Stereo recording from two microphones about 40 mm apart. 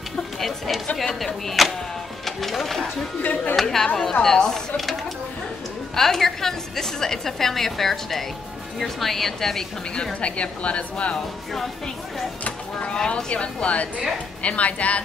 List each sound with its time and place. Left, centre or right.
0.4 s a woman's voice: centre
3.2 s speech: left
3.5 s a woman's voice: centre
5.9 s a woman's voice: centre
10.2 s a woman's voice: left
13.1 s a woman's voice: left